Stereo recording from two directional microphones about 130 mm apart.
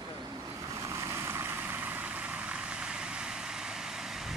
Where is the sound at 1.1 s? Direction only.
20° right (ahead or behind).